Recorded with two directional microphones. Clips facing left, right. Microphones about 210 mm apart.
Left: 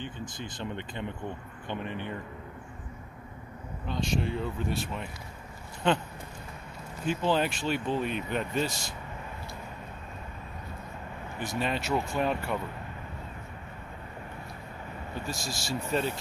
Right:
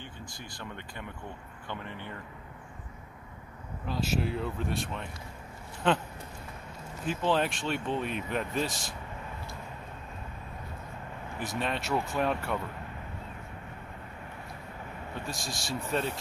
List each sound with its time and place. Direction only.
0.0 s speech: 20° left (ahead or behind)
3.8 s speech: 5° right (ahead or behind)
7.1 s speech: centre (ahead or behind)
11.3 s speech: centre (ahead or behind)
15.1 s speech: centre (ahead or behind)